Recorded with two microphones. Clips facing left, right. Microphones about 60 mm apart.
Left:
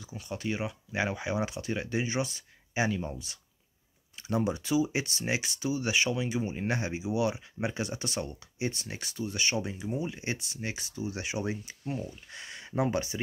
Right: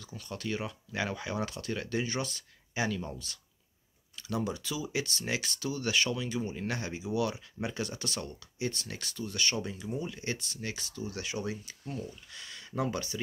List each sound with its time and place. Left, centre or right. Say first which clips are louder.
0.0 s speech: left 3 dB; centre
4.2 s speech: left 4 dB; left